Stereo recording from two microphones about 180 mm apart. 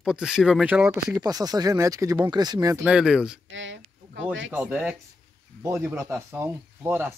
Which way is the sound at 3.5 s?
90° right.